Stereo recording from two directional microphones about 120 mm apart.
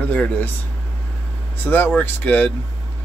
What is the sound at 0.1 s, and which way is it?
Speech, 10° left (ahead or behind).